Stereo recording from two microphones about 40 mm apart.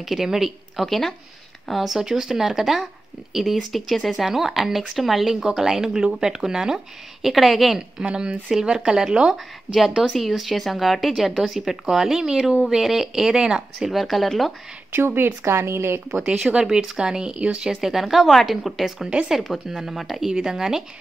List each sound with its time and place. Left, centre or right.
0.0 s speech: centre
0.8 s speech: centre
2.0 s speech: centre
4.1 s speech: centre
8.0 s speech: right
10.1 s speech: centre
13.2 s speech: centre
13.8 s speech: centre
14.9 s speech: right
16.1 s speech: centre
17.7 s speech: centre